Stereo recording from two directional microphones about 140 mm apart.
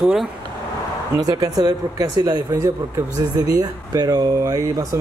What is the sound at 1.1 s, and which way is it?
Speech, 25° right (ahead or behind).